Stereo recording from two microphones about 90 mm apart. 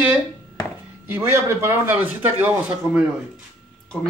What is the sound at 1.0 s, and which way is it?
A man's voice, 25° right (ahead or behind).